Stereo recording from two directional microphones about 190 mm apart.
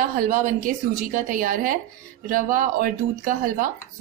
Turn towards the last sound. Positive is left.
turn(degrees=-45)  # may be behind; listen again after turning